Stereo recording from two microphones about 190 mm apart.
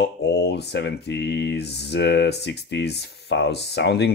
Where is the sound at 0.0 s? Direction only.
60° left (ahead or behind).